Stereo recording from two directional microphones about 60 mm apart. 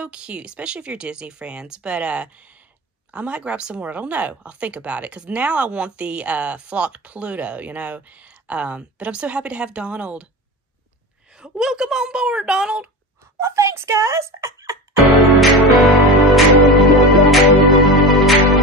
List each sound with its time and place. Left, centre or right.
0.0 s speech: centre
11.3 s speech: centre
13.4 s speech: right
15.1 s music: centre